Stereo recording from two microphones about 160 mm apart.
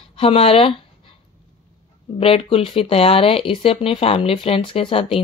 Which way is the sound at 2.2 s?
35° left (ahead or behind).